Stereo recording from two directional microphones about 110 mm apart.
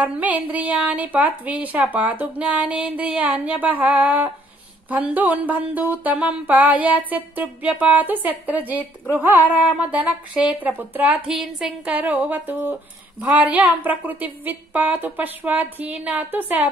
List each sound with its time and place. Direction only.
0.0 s a woman's voice: 15° right (ahead or behind)